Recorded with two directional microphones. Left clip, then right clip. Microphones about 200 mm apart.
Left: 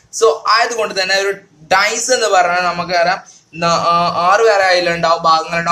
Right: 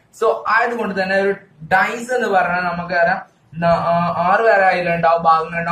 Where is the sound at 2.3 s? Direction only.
55° left (ahead or behind).